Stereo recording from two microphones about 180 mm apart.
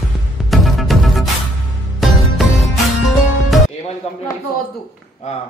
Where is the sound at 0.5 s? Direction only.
Centre (ahead or behind).